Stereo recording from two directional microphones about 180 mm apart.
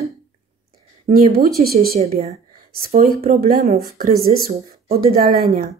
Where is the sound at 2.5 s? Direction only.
55° right (ahead or behind).